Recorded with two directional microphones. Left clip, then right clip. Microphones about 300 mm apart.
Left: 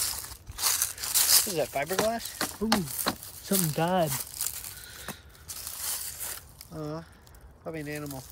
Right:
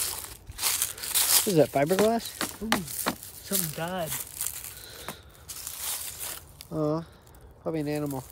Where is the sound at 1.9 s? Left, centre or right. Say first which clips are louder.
Right 4 dB; centre.